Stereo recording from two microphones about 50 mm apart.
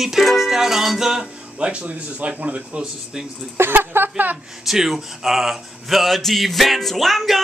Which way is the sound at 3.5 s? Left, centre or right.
Right.